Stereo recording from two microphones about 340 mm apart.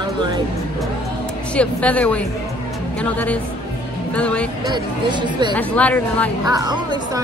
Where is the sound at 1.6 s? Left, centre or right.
Centre.